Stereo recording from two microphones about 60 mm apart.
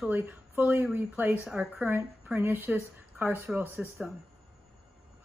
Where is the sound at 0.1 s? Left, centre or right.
Right.